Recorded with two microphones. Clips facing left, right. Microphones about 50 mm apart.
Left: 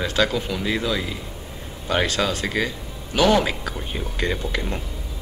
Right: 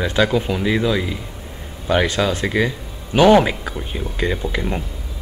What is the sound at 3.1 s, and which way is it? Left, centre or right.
Speech, right.